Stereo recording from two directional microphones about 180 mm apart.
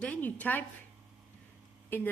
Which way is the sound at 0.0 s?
10° left (ahead or behind).